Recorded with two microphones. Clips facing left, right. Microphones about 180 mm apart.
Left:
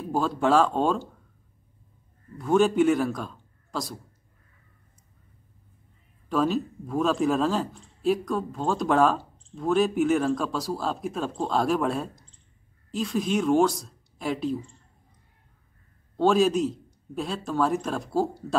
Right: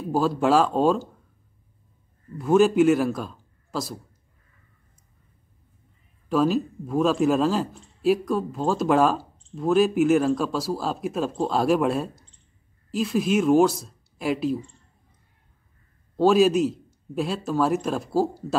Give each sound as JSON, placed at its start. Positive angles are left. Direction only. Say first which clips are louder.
{"t": 0.1, "sound": "speech", "louder": "right 2 dB", "side_deg": -5}
{"t": 2.3, "sound": "a man's voice", "louder": "right 3 dB", "side_deg": -5}
{"t": 6.2, "sound": "speech", "louder": "right 3 dB", "side_deg": -5}
{"t": 16.2, "sound": "speech", "louder": "right 3 dB", "side_deg": -5}